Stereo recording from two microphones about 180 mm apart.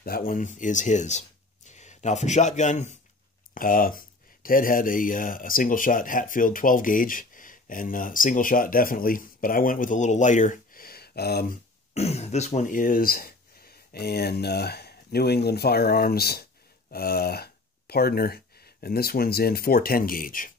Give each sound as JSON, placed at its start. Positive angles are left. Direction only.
{"t": 0.0, "sound": "speech", "side_deg": 55}
{"t": 3.5, "sound": "speech", "side_deg": 50}
{"t": 11.9, "sound": "speech", "side_deg": 35}